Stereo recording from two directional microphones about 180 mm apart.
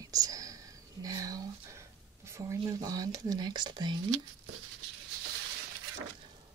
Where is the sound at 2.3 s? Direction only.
20° right (ahead or behind).